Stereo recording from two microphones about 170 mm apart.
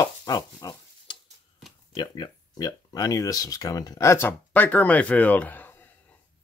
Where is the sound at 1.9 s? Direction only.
25° left (ahead or behind).